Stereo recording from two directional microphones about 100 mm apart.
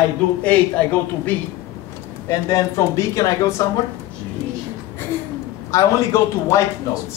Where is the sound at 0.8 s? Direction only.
15° left (ahead or behind).